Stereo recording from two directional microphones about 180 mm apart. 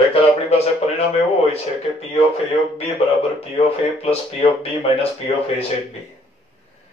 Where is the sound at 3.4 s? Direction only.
35° left (ahead or behind).